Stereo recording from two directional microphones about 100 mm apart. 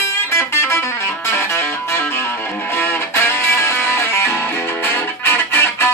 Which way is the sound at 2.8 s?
25° left (ahead or behind).